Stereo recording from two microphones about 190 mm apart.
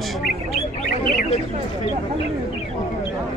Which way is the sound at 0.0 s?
Centre (ahead or behind).